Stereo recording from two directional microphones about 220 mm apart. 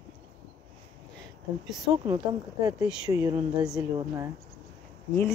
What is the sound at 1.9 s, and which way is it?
Speech, 20° right (ahead or behind).